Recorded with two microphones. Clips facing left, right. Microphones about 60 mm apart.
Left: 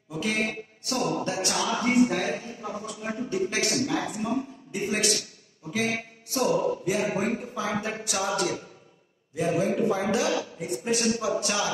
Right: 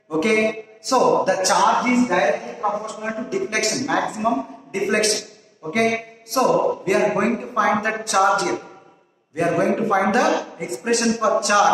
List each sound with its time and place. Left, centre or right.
0.1 s speech: right